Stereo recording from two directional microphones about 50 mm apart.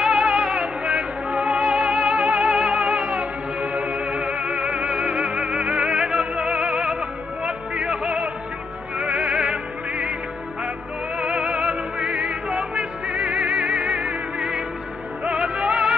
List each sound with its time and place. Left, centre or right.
0.0 s music: centre
11.1 s music: centre